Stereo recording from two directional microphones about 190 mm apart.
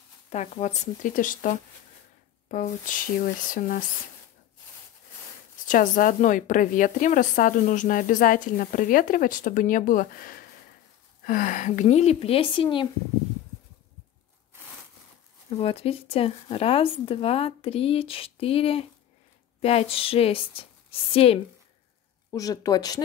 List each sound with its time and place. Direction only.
0.3 s a woman's voice: 35° left (ahead or behind)
5.7 s a woman's voice: 45° left (ahead or behind); by 12.8 s 25° left (ahead or behind)
15.5 s a woman's voice: 30° left (ahead or behind)
22.3 s a woman's voice: 20° left (ahead or behind)